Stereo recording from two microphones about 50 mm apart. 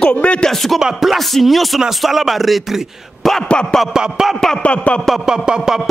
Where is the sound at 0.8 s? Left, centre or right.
Centre.